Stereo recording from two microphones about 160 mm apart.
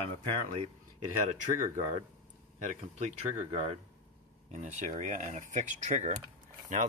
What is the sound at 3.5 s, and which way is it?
Speech, 40° right (ahead or behind).